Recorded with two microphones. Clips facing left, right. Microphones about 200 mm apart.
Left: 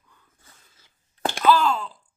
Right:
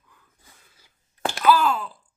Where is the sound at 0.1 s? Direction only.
10° right (ahead or behind).